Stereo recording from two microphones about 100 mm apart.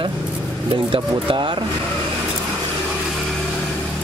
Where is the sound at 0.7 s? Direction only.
55° right (ahead or behind).